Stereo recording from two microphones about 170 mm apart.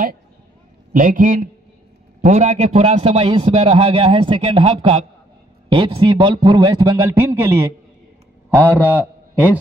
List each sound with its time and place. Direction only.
0.9 s a man's voice: 50° right (ahead or behind); by 7.7 s 15° right (ahead or behind)
8.9 s a man's voice: 10° right (ahead or behind)